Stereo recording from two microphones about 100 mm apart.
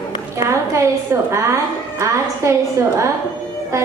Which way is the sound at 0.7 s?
30° right (ahead or behind).